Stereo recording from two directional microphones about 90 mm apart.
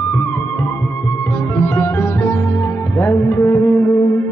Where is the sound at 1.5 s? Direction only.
25° left (ahead or behind).